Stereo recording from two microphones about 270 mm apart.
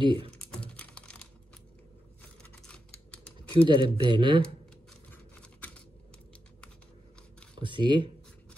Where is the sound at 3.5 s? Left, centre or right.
Centre.